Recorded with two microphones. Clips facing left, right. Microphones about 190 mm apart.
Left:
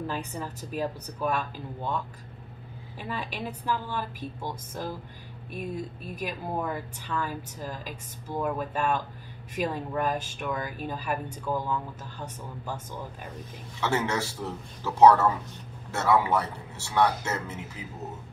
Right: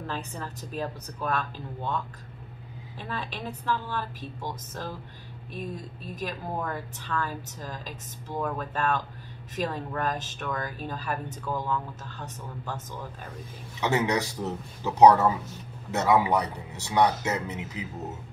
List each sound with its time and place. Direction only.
0.0 s speech: 10° left (ahead or behind)
6.1 s speech: 10° left (ahead or behind)
13.7 s a man's voice: 15° right (ahead or behind)